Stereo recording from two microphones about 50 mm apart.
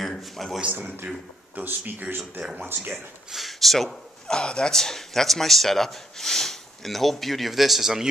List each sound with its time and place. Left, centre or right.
0.2 s a man's voice: centre
1.0 s speech: right
1.7 s speech: right
3.3 s speech: centre
4.3 s a man's voice: centre